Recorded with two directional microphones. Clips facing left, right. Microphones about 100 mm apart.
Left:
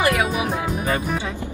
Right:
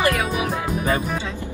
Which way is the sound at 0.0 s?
20° left (ahead or behind).